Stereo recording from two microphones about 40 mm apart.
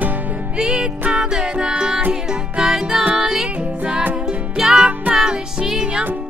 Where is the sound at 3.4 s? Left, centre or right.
Right.